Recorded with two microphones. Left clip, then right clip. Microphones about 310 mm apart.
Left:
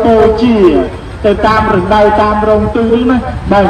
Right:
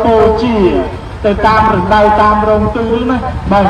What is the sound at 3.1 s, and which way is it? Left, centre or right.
Speech, centre.